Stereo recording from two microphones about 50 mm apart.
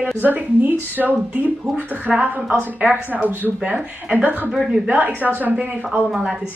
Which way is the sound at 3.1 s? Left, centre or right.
Right.